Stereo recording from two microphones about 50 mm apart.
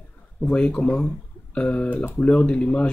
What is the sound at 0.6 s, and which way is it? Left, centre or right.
Speech, left.